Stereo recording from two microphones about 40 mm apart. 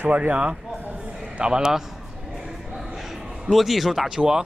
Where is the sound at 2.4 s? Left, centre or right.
Centre.